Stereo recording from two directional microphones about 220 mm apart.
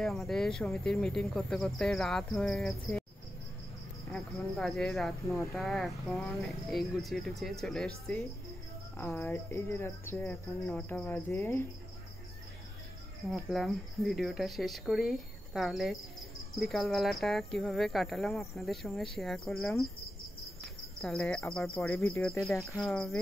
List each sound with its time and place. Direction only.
0.0 s speech: centre (ahead or behind)
4.1 s speech: 5° left (ahead or behind)
8.9 s speech: 10° left (ahead or behind)
13.3 s speech: centre (ahead or behind)
21.0 s speech: 5° left (ahead or behind)